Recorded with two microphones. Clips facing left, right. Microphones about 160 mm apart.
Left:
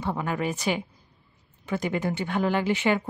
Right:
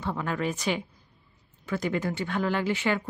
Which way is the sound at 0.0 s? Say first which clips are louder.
Left 1 dB; 15° left (ahead or behind).